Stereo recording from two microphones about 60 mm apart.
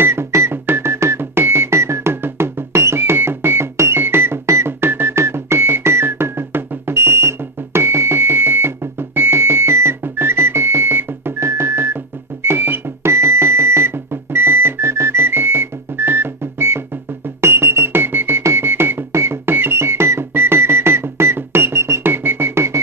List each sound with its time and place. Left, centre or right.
0.0 s music: right
19.1 s music: right